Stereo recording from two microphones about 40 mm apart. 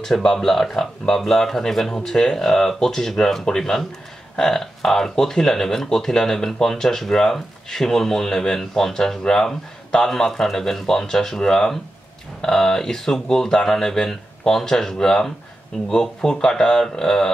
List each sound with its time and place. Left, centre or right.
0.0 s speech: centre